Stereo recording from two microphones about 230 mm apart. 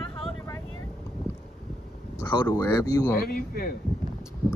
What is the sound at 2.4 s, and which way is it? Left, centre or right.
Speech, centre.